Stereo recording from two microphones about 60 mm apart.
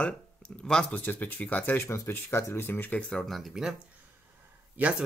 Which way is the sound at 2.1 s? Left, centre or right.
Left.